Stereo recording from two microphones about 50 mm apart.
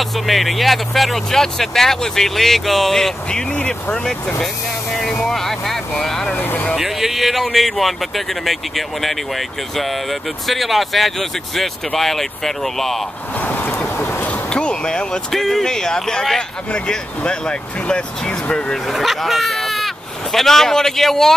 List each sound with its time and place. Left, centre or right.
0.0 s speech: centre
5.2 s vehicle: centre
6.3 s vehicle: left
6.8 s a man's voice: centre
10.4 s speech: centre
13.4 s vehicle: left
14.5 s speech: centre
15.3 s speech: centre
18.9 s speech: centre